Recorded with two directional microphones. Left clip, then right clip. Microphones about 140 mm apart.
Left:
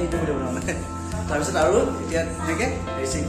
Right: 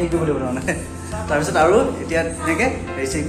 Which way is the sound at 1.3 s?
10° right (ahead or behind).